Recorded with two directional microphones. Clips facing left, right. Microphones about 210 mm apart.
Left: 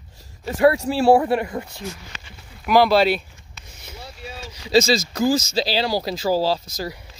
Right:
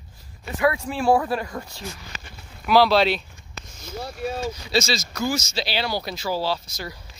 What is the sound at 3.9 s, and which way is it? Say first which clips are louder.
Vehicle: right 9 dB; 50° right (ahead or behind).